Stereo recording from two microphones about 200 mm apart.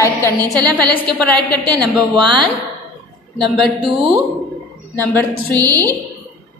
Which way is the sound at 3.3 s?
Centre (ahead or behind).